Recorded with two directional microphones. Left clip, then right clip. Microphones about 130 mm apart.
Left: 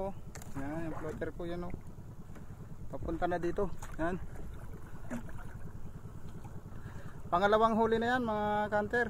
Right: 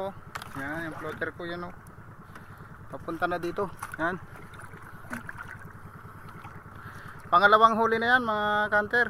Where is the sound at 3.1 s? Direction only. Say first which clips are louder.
Right 4 dB; 10° right (ahead or behind).